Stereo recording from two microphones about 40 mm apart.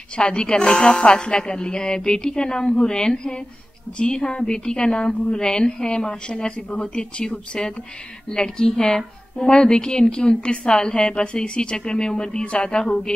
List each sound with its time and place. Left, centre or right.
0.1 s a woman's voice: left